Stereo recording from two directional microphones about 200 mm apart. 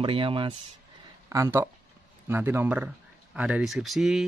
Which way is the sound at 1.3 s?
15° right (ahead or behind).